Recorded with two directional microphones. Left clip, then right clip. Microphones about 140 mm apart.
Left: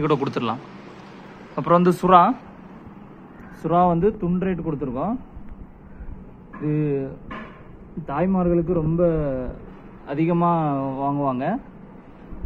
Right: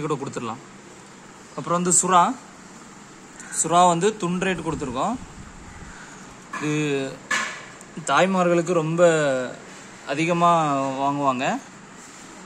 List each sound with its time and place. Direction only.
0.0 s speech: centre (ahead or behind)
3.6 s a man's voice: 20° right (ahead or behind)
6.7 s a man's voice: 10° right (ahead or behind)
8.1 s a man's voice: 20° right (ahead or behind)